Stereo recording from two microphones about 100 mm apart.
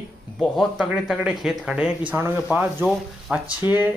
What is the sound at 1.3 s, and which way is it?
Speech, 5° right (ahead or behind).